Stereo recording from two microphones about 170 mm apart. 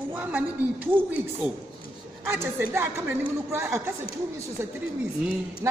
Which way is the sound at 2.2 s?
15° right (ahead or behind).